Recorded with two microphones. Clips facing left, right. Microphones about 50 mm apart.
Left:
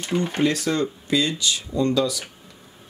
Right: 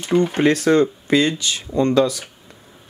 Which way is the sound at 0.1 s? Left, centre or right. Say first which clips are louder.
Right 6 dB; right.